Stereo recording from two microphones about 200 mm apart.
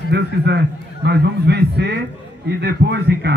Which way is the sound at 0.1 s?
55° right (ahead or behind).